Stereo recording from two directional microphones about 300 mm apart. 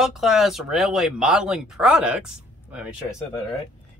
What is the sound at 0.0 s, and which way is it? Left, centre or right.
Speech, centre.